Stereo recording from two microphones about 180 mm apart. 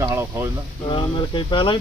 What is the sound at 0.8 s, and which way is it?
Speech, 30° left (ahead or behind).